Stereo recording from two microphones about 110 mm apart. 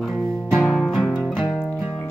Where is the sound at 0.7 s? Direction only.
Centre (ahead or behind).